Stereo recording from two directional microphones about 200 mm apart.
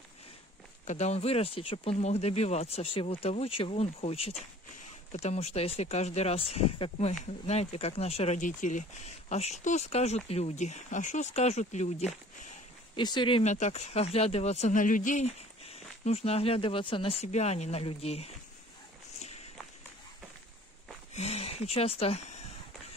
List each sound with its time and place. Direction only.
0.8 s speech: 35° left (ahead or behind)
12.9 s speech: 20° left (ahead or behind)
13.4 s speech: 35° left (ahead or behind)
21.1 s a sound: 30° left (ahead or behind)